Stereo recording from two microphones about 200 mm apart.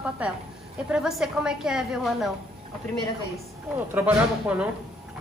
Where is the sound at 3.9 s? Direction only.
10° right (ahead or behind).